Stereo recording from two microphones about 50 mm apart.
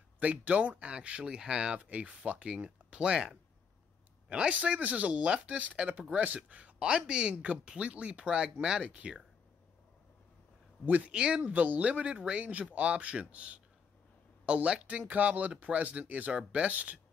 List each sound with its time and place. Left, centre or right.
0.2 s speech: right
10.9 s speech: right